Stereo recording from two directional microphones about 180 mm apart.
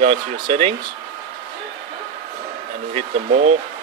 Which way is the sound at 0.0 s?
40° right (ahead or behind).